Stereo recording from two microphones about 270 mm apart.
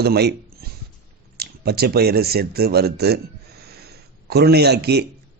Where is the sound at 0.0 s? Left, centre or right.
Right.